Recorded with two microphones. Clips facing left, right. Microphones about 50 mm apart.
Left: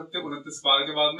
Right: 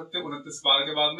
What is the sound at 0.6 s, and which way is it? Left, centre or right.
Speech, centre.